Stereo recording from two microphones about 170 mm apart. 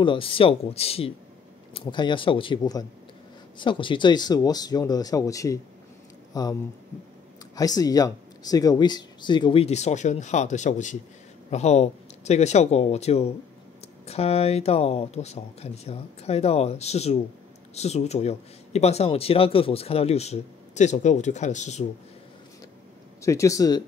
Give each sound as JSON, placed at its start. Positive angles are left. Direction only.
{"t": 0.0, "sound": "speech", "side_deg": 30}
{"t": 23.2, "sound": "speech", "side_deg": 20}